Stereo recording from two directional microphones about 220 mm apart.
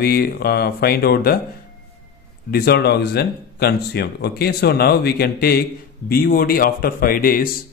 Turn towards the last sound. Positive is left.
turn(degrees=40)  # may be behind; listen again after turning